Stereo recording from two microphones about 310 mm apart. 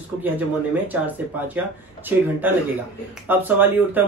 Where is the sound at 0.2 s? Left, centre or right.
Centre.